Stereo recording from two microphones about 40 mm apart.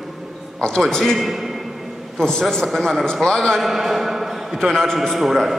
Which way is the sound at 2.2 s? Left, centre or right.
Centre.